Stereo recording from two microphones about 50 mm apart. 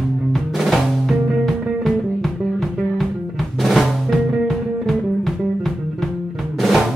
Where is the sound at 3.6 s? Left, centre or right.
Centre.